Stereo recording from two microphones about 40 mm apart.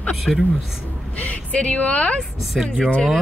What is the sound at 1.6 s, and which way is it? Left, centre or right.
Speech, left.